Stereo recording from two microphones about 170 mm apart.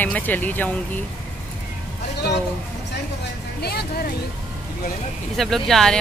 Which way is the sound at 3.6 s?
70° left (ahead or behind).